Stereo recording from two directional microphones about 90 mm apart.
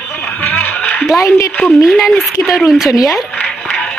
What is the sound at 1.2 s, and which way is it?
Speech, 30° left (ahead or behind).